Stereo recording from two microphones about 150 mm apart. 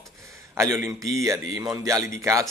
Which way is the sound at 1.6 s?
20° right (ahead or behind).